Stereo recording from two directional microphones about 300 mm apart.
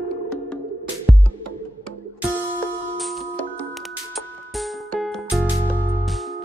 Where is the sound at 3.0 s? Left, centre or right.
Centre.